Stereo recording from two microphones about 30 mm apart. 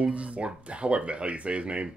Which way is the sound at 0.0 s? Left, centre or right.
Right.